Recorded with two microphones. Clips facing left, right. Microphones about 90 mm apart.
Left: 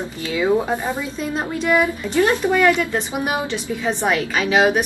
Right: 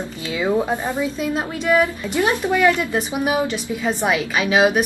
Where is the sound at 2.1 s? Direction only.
10° right (ahead or behind).